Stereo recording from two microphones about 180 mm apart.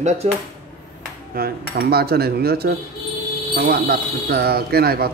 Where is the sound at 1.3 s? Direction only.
60° right (ahead or behind).